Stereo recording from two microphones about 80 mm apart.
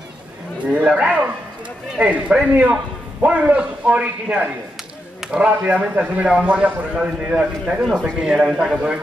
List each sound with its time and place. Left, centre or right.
0.7 s a man's voice: centre